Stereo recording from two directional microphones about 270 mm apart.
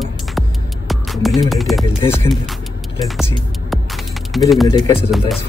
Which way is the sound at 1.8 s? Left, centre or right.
Centre.